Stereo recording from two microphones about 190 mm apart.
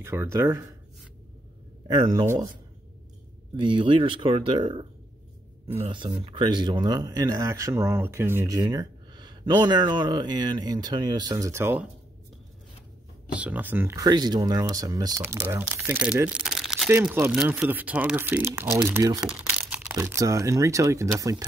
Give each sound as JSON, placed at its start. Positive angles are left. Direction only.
{"t": 0.0, "sound": "speech", "side_deg": -15}
{"t": 1.9, "sound": "speech", "side_deg": -20}
{"t": 3.5, "sound": "speech", "side_deg": -25}
{"t": 5.9, "sound": "speech", "side_deg": -25}
{"t": 13.4, "sound": "speech", "side_deg": -10}